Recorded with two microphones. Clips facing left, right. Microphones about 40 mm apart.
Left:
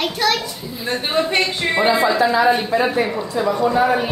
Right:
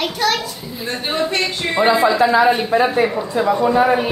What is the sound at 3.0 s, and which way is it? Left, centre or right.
Speech, centre.